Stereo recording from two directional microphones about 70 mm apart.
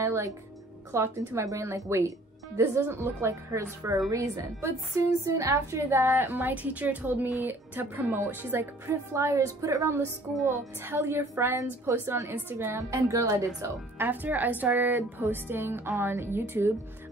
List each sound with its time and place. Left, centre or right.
0.0 s a woman's voice: right
9.1 s a woman's voice: right
10.3 s music: centre
10.8 s a woman's voice: right
12.7 s a woman's voice: right
13.9 s a woman's voice: right